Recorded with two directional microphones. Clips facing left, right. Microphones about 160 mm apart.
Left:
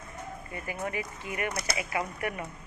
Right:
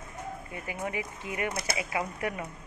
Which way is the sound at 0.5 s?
15° right (ahead or behind).